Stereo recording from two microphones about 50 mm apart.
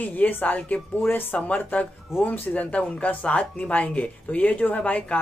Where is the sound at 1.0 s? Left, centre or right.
Left.